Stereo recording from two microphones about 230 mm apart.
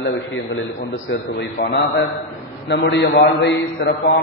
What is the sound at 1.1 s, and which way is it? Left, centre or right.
A man's voice, left.